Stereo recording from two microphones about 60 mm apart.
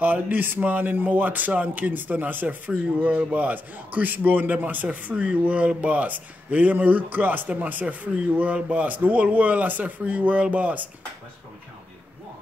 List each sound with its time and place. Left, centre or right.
0.0 s speech: right